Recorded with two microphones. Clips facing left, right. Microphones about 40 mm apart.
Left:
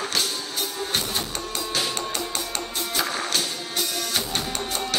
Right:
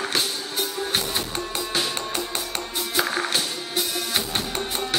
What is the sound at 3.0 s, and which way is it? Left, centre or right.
Music, centre.